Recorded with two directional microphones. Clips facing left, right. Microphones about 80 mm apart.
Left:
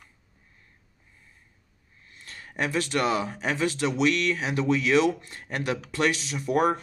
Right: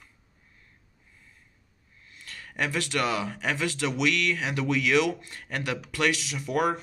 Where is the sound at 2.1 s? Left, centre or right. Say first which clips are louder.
Left 1 dB; left.